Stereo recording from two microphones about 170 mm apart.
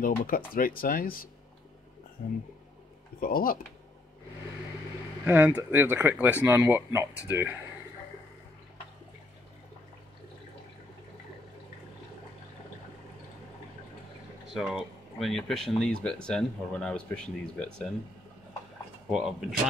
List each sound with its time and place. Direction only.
0.0 s speech: 55° left (ahead or behind)
5.2 s speech: 10° right (ahead or behind)
14.5 s speech: centre (ahead or behind)
19.0 s speech: 5° right (ahead or behind)